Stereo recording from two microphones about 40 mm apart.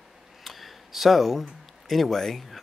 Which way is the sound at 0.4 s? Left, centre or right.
Centre.